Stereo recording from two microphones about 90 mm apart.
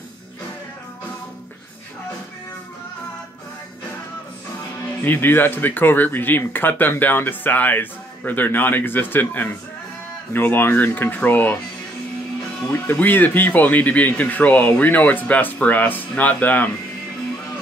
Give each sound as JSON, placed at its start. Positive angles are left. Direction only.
{"t": 5.0, "sound": "speech", "side_deg": 20}
{"t": 12.9, "sound": "speech", "side_deg": 20}